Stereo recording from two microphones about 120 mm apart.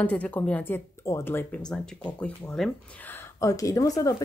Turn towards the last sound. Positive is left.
turn(degrees=30)  # may be behind; listen again after turning